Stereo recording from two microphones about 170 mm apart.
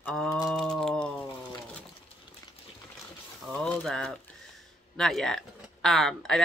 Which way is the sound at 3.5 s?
5° left (ahead or behind).